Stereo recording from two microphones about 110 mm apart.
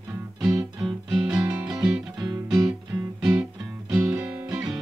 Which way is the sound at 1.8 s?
40° right (ahead or behind).